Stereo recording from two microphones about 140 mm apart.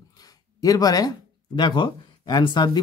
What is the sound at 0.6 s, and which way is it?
Speech, 25° left (ahead or behind).